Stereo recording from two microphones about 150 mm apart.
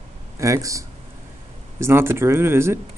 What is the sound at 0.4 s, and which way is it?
Speech, 20° right (ahead or behind).